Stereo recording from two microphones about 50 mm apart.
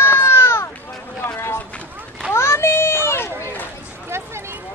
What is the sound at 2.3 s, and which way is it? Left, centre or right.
Children playing, left.